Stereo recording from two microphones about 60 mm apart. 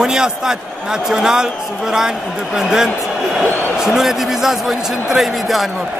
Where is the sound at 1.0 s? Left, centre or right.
Centre.